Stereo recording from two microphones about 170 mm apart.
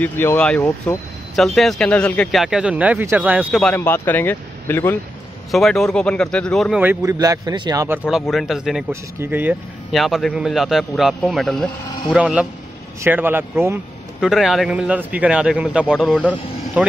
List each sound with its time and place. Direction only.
0.0 s a man's voice: 10° left (ahead or behind); by 3.4 s 10° right (ahead or behind)
3.5 s speech: 10° left (ahead or behind)
5.5 s a man's voice: centre (ahead or behind)
6.8 s speech: 15° right (ahead or behind)
8.1 s a man's voice: centre (ahead or behind)
14.2 s a man's voice: centre (ahead or behind)
16.1 s speech: 10° left (ahead or behind)
16.8 s speech: 10° right (ahead or behind)